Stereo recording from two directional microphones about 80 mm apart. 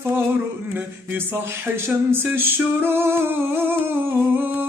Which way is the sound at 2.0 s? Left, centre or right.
Right.